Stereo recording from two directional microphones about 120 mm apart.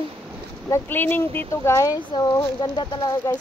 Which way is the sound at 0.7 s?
20° left (ahead or behind).